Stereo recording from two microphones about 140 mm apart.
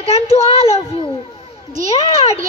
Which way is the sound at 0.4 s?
45° left (ahead or behind).